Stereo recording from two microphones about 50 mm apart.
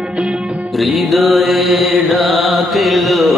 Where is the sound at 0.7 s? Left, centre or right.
Centre.